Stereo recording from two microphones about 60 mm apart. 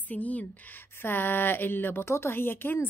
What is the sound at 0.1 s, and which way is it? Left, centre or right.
Speech, left.